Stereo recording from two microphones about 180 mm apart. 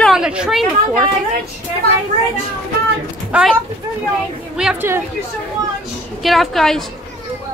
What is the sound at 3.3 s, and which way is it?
Speech, 5° right (ahead or behind).